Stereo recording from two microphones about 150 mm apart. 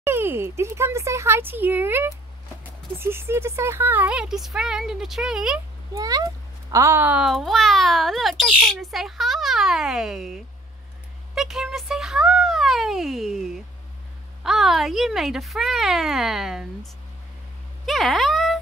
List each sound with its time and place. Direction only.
0.0 s a child's voice: 15° right (ahead or behind)
5.9 s a child's voice: 25° right (ahead or behind); by 18.6 s centre (ahead or behind)